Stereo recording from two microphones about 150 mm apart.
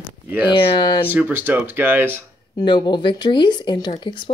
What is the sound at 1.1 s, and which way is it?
Speech, 10° right (ahead or behind).